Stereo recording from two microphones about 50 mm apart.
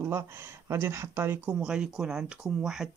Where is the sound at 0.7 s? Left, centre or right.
Right.